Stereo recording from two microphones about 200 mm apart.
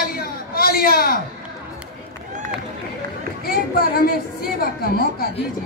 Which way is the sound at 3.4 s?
50° left (ahead or behind).